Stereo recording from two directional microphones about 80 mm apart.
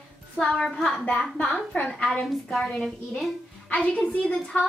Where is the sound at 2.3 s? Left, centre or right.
Centre.